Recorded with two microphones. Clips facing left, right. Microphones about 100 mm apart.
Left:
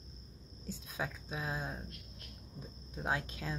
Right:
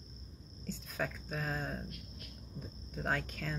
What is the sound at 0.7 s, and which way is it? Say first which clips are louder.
Speech: right 2 dB; 10° left (ahead or behind).